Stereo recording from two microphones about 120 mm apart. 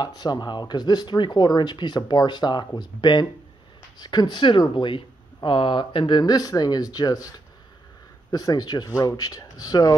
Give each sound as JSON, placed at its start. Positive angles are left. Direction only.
{"t": 0.0, "sound": "speech", "side_deg": 35}